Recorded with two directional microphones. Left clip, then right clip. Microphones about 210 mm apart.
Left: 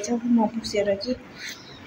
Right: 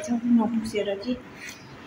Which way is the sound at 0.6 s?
5° left (ahead or behind).